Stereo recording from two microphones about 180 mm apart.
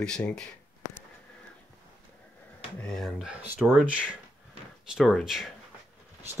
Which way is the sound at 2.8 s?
Centre (ahead or behind).